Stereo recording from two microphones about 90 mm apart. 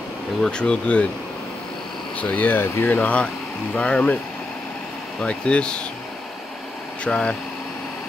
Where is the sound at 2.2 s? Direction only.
15° left (ahead or behind).